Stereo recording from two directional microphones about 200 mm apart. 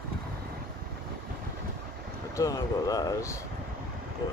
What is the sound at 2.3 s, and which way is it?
Speech, 15° left (ahead or behind).